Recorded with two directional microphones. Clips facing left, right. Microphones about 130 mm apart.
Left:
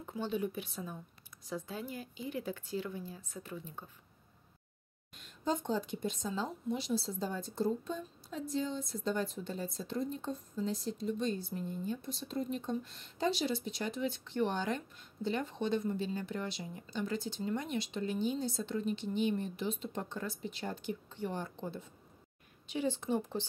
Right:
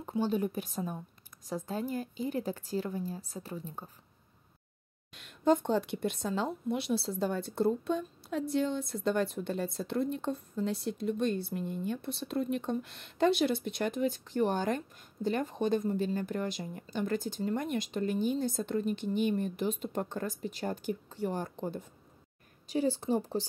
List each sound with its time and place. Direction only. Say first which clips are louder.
0.0 s a woman's voice: right 5 dB; 35° right (ahead or behind)
5.1 s a woman's voice: right 8 dB; 65° right (ahead or behind); by 23.4 s 35° right (ahead or behind)